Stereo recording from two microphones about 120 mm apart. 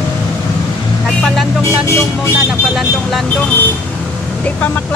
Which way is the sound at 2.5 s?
Centre (ahead or behind).